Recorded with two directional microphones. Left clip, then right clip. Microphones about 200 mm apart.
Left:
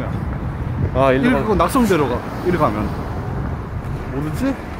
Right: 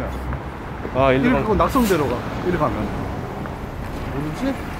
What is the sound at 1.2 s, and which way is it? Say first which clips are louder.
Speech: left 2 dB; 45° left (ahead or behind).